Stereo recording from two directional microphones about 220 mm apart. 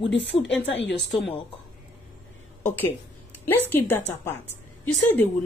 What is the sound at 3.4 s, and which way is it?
A woman's voice, 10° left (ahead or behind).